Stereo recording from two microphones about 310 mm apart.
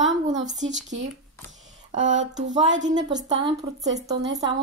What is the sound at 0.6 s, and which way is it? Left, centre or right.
A woman's voice, right.